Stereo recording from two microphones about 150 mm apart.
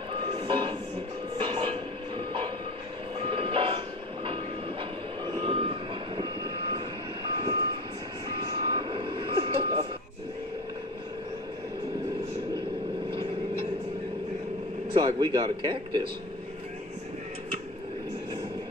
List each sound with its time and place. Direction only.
0.1 s train: 35° right (ahead or behind)
3.2 s vehicle: 35° right (ahead or behind)
7.3 s reversing beeps: 30° right (ahead or behind)
14.9 s speech: 30° right (ahead or behind)